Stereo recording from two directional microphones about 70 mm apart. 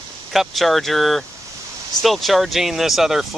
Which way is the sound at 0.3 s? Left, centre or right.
Centre.